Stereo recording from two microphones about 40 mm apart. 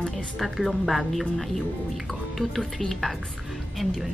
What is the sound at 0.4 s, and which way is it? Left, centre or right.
A woman's voice, centre.